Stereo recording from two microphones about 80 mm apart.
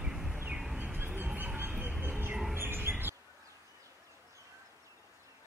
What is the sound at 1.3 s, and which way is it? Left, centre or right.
Music, right.